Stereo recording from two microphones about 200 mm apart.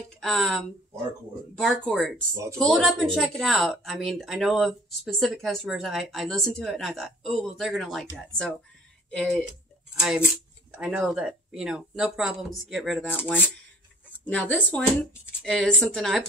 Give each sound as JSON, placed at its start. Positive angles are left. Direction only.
{"t": 0.2, "sound": "speech", "side_deg": 0}
{"t": 2.3, "sound": "speech", "side_deg": -15}
{"t": 2.6, "sound": "speech", "side_deg": 0}
{"t": 9.1, "sound": "speech", "side_deg": 5}
{"t": 14.2, "sound": "speech", "side_deg": 5}